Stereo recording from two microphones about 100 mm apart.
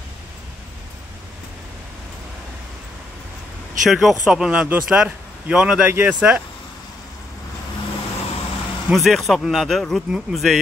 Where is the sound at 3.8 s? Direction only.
Centre (ahead or behind).